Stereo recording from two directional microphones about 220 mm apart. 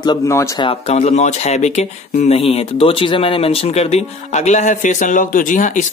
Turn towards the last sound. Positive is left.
turn(degrees=35)  # may be behind; listen again after turning